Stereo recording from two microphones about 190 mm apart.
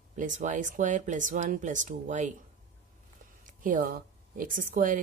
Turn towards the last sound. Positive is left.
turn(degrees=-45)  # may be behind; listen again after turning